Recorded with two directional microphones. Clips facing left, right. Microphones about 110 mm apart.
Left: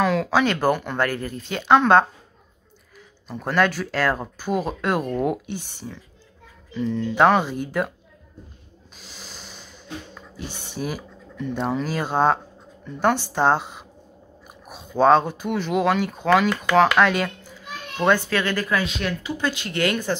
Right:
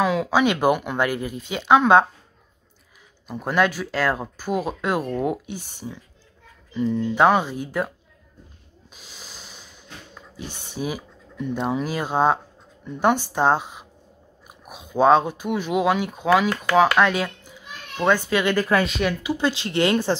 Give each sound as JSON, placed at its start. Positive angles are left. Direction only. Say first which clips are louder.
{"t": 0.0, "sound": "speech", "louder": "even", "side_deg": -5}
{"t": 3.3, "sound": "speech", "louder": "even", "side_deg": -5}
{"t": 8.9, "sound": "snort", "louder": "left 1 dB", "side_deg": -5}
{"t": 10.3, "sound": "speech", "louder": "even", "side_deg": -5}
{"t": 18.1, "sound": "speech", "louder": "right 2 dB", "side_deg": -15}
{"t": 18.9, "sound": "speech", "louder": "right 4 dB", "side_deg": -5}
{"t": 19.3, "sound": "speech", "louder": "right 3 dB", "side_deg": -25}